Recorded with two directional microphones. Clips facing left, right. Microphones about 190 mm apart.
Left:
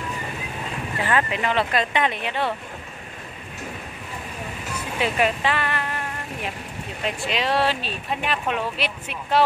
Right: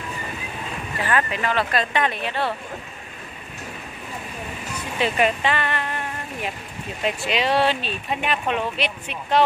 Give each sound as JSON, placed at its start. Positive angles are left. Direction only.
{"t": 1.0, "sound": "speech", "side_deg": 20}
{"t": 5.0, "sound": "speech", "side_deg": 0}